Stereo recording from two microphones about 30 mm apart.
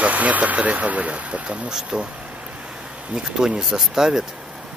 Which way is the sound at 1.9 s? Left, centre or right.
Right.